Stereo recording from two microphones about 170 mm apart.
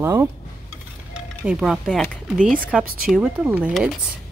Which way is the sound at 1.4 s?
5° right (ahead or behind).